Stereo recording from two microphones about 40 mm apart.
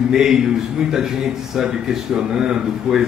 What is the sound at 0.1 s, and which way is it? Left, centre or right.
Speech, centre.